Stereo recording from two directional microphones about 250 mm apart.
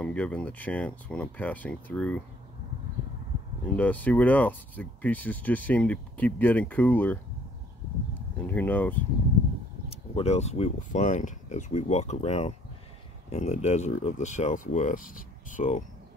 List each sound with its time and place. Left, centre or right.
0.0 s speech: centre
3.7 s speech: centre
8.5 s speech: centre
10.1 s speech: left